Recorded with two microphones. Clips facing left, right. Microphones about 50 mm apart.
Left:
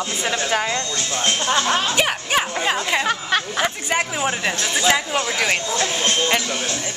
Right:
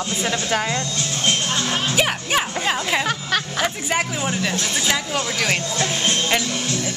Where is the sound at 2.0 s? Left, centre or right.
Centre.